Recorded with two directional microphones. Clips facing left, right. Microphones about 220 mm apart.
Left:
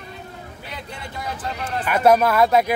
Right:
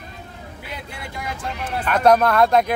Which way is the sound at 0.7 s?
10° right (ahead or behind).